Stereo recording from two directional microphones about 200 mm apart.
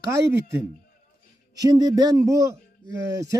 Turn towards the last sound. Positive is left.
turn(degrees=-15)  # may be behind; listen again after turning